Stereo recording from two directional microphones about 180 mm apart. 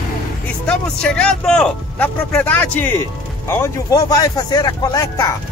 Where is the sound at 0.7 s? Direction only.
5° left (ahead or behind).